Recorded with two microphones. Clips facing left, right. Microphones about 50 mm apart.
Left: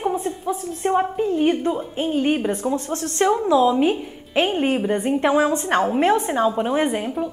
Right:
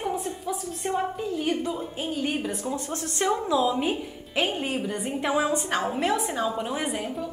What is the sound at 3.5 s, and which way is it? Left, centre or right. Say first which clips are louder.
Speech: left 8 dB; left.